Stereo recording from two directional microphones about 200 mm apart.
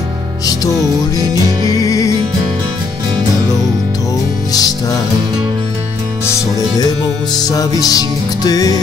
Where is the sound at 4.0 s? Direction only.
15° left (ahead or behind).